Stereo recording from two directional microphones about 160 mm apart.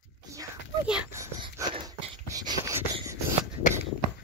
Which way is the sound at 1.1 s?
20° right (ahead or behind).